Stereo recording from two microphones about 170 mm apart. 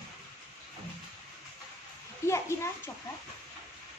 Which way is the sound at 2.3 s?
15° left (ahead or behind).